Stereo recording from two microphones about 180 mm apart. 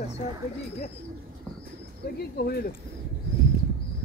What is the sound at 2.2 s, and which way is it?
Speech, 60° left (ahead or behind).